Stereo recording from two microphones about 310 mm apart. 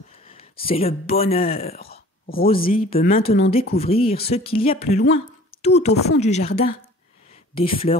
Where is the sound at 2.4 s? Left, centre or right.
Centre.